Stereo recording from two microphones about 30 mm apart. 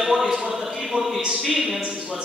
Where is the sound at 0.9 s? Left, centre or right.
Centre.